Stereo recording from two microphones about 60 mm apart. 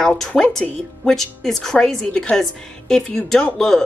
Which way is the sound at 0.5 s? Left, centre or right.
Centre.